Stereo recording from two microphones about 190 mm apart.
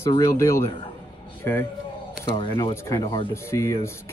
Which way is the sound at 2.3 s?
25° left (ahead or behind).